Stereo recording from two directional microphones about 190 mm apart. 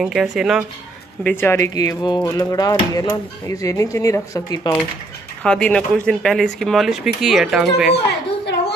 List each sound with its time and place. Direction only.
0.0 s speech: centre (ahead or behind)
1.2 s speech: 10° left (ahead or behind)
5.4 s speech: 5° left (ahead or behind)